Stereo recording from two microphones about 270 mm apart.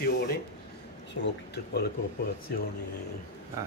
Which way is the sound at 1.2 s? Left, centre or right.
Left.